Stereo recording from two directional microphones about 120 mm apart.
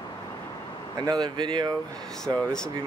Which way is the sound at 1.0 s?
35° right (ahead or behind).